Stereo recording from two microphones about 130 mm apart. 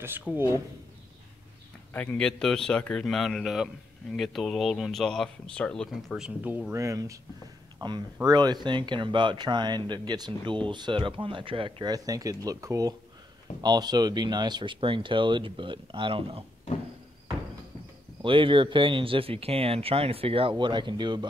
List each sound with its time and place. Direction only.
2.0 s speech: 10° left (ahead or behind); by 6.6 s 10° right (ahead or behind)
6.7 s speech: 25° right (ahead or behind); by 16.4 s 45° right (ahead or behind)
18.2 s speech: 40° right (ahead or behind)